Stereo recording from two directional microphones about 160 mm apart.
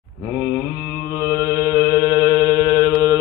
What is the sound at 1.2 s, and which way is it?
Mantra, 20° right (ahead or behind).